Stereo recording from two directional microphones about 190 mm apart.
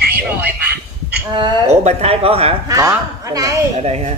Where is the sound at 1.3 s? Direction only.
30° right (ahead or behind).